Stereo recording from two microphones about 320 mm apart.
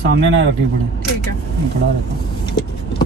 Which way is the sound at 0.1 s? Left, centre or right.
Right.